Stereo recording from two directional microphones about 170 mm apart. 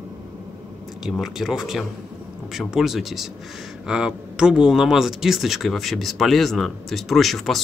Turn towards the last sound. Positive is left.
turn(degrees=0)  # may be behind; listen again after turning